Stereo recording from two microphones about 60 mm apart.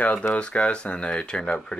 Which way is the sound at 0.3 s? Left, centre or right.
Centre.